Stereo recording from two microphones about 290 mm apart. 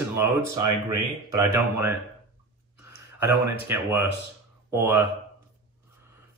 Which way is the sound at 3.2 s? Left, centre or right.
Centre.